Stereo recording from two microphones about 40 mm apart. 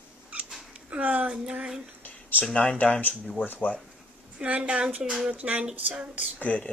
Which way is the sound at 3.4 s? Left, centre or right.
Left.